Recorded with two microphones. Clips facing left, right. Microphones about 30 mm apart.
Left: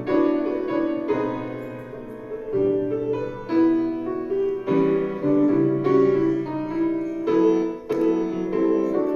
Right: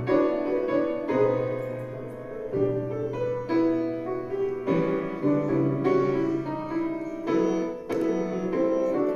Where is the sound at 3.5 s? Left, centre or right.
Centre.